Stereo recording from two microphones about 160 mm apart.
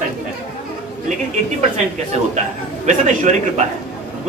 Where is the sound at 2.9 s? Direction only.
50° right (ahead or behind).